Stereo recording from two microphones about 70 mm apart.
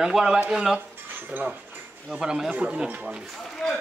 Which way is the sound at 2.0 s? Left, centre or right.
Centre.